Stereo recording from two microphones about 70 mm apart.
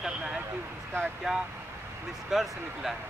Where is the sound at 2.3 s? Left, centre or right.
Centre.